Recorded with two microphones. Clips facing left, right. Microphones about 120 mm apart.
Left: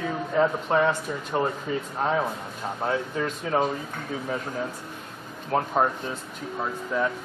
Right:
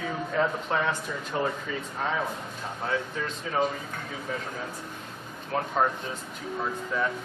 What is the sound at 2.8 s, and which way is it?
Speech, 35° left (ahead or behind).